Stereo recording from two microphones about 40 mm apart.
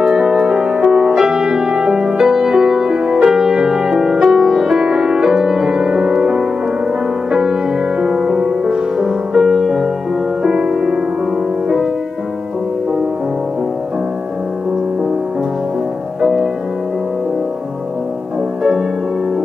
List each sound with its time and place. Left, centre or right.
0.0 s music: centre
16.2 s music: centre
18.6 s music: centre